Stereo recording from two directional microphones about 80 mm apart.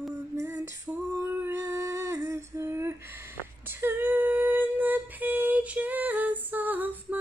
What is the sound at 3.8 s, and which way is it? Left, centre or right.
Female singing, right.